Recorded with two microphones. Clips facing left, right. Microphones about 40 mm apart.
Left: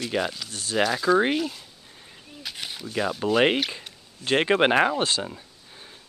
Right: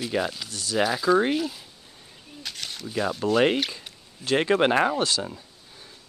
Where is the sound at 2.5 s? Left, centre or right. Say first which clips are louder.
Left 2 dB; centre.